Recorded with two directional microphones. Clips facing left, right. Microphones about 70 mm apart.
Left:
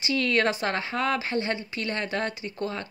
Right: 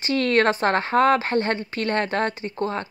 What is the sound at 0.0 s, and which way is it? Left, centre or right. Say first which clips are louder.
Speech: right 5 dB; right.